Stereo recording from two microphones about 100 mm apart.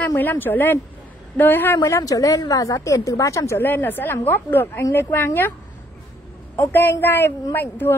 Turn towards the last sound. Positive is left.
turn(degrees=20)  # may be behind; listen again after turning